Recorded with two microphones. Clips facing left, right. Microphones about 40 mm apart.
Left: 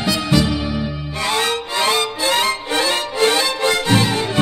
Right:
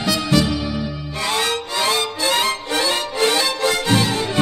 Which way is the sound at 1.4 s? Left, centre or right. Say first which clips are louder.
Left 2 dB; left.